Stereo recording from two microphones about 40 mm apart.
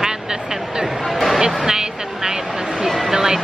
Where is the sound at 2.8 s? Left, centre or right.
Centre.